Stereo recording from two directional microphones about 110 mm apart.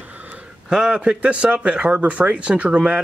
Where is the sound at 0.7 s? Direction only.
5° right (ahead or behind).